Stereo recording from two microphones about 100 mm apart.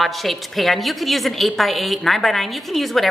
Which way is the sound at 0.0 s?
Centre (ahead or behind).